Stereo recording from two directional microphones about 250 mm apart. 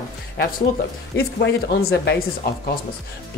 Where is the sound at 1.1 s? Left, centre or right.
Left.